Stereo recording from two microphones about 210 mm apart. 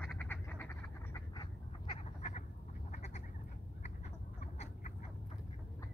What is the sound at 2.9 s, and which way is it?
Duck, 30° left (ahead or behind).